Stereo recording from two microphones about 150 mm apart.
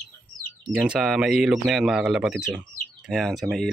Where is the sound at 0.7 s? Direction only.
5° right (ahead or behind).